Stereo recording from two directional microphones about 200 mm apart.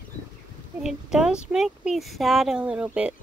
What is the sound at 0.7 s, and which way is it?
Speech, 5° right (ahead or behind).